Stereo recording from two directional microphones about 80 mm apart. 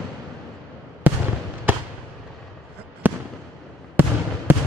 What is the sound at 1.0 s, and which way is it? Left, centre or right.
Fireworks, right.